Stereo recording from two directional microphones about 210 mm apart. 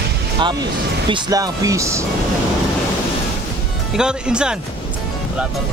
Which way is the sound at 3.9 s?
5° right (ahead or behind).